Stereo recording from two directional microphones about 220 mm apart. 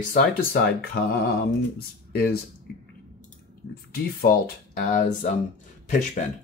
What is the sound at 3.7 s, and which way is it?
Speech, 40° left (ahead or behind).